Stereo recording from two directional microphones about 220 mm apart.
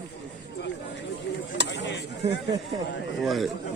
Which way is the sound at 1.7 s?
50° left (ahead or behind).